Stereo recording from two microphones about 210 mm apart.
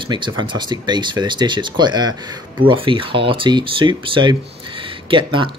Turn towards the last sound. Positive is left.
turn(degrees=-25)  # may be behind; listen again after turning